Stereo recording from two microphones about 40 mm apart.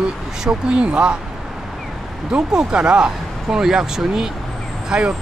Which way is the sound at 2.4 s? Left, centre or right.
Centre.